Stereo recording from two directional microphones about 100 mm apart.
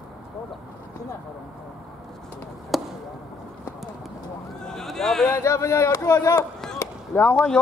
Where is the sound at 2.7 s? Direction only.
Centre (ahead or behind).